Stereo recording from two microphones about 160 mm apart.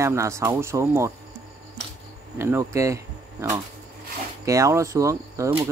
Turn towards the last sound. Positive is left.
turn(degrees=-20)  # may be behind; listen again after turning